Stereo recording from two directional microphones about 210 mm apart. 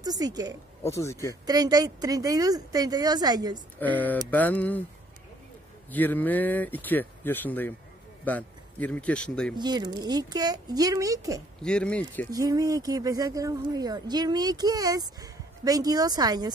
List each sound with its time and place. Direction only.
0.0 s speech: 20° right (ahead or behind)
0.8 s speech: 15° left (ahead or behind)
1.4 s speech: 20° right (ahead or behind)
3.7 s speech: 10° left (ahead or behind)
5.9 s speech: 10° left (ahead or behind)
9.6 s speech: 20° right (ahead or behind)
11.6 s speech: 5° left (ahead or behind)
12.3 s speech: 15° right (ahead or behind)